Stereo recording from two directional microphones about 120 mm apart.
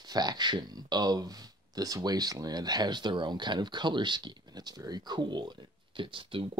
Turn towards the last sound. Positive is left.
turn(degrees=-45)  # may be behind; listen again after turning